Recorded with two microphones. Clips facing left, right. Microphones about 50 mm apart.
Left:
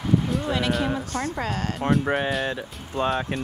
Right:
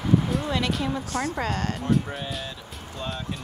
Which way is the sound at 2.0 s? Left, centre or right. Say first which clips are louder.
Left 9 dB; left.